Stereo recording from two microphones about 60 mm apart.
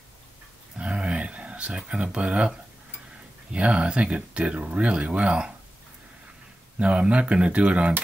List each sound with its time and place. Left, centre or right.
0.7 s a sound: centre
3.5 s speech: centre
6.8 s speech: right